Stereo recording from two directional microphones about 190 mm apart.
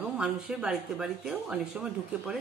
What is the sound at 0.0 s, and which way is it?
Speech, 5° right (ahead or behind).